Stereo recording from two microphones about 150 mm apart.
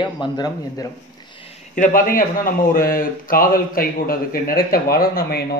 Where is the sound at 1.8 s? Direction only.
65° left (ahead or behind).